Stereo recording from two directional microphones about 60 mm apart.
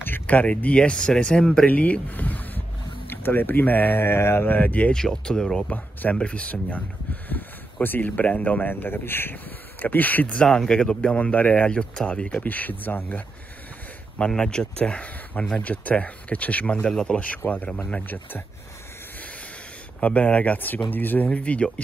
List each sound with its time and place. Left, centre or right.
0.0 s speech: left; by 1.7 s centre
1.7 s speech: left
4.9 s speech: centre; by 10.4 s left
10.4 s speech: centre
11.1 s speech: left
14.1 s speech: centre
18.0 s speech: left
20.0 s speech: left